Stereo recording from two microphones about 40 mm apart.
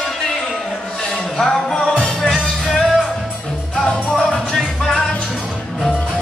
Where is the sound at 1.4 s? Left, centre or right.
Centre.